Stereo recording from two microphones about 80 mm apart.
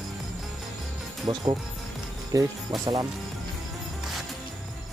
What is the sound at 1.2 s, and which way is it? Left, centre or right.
Speech, right.